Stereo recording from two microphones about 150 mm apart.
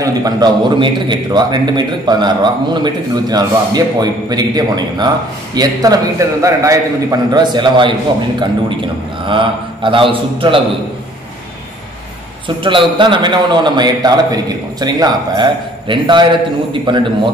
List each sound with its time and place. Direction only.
0.0 s a man's voice: 25° right (ahead or behind)
9.3 s a man's voice: 35° right (ahead or behind)
12.4 s a man's voice: 35° right (ahead or behind)